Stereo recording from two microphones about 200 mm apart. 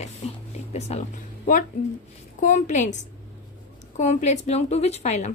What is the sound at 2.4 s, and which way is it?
A woman's voice, 35° left (ahead or behind).